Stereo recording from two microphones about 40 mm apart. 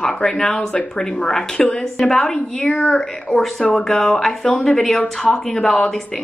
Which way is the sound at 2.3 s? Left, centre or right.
Left.